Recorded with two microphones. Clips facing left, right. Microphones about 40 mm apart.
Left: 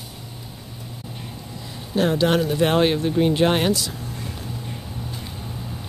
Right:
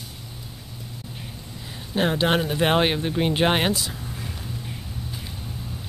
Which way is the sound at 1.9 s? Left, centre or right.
Right.